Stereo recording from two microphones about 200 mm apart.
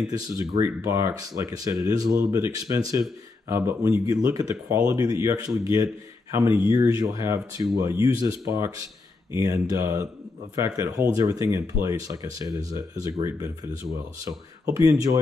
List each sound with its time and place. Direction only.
0.1 s speech: 15° right (ahead or behind)
14.9 s speech: 15° right (ahead or behind)